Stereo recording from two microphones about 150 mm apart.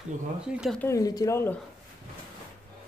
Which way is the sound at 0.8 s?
20° left (ahead or behind).